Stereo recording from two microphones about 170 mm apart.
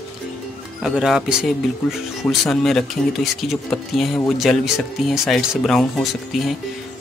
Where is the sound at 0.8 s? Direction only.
Centre (ahead or behind).